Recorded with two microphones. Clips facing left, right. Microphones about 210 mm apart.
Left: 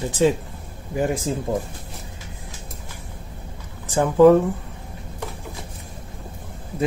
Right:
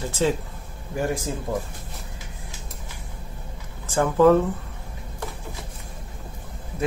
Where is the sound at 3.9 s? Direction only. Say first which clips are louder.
Left 4 dB; 15° left (ahead or behind).